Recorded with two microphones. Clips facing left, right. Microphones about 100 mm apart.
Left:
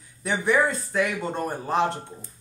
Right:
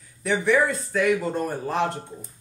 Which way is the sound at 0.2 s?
20° left (ahead or behind).